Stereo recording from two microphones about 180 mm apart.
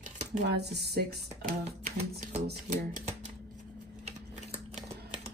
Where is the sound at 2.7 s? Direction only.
45° right (ahead or behind).